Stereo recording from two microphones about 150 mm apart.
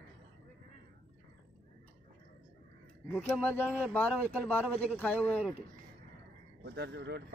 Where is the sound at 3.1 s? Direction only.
10° left (ahead or behind).